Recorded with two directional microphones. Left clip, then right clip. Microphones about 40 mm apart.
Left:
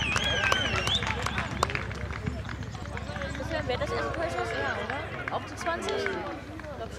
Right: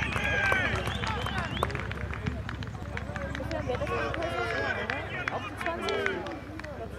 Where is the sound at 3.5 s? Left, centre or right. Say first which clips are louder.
Left 3 dB; centre.